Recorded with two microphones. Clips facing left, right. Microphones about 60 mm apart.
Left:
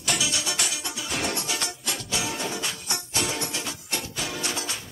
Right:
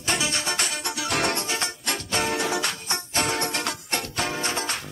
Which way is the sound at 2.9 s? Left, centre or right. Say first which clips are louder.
Right 3 dB; right.